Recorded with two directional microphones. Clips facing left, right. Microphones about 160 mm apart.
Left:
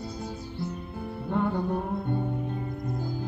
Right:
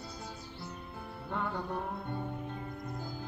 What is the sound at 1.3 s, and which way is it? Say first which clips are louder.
Music: left 9 dB; 25° left (ahead or behind).